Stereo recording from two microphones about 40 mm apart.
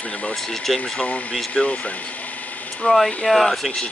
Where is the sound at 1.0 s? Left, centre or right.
Left.